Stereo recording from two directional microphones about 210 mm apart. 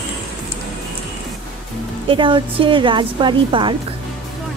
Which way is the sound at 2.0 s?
25° right (ahead or behind).